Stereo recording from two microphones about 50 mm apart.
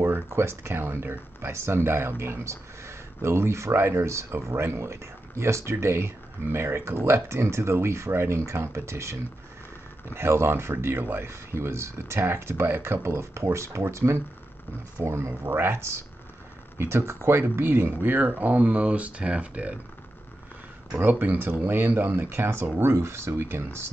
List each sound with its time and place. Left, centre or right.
0.3 s speech: right
4.3 s speech: right
10.1 s speech: right
15.5 s speech: right
16.7 s speech: right
18.1 s speech: right
21.0 s speech: right